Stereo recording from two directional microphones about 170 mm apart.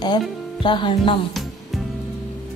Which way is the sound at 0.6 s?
30° left (ahead or behind).